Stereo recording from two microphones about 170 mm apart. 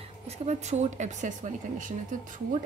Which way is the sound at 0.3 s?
40° right (ahead or behind).